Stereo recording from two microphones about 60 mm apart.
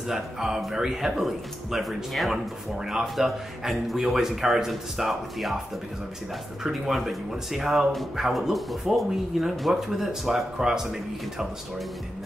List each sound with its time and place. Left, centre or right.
0.1 s speech: centre
6.6 s speech: centre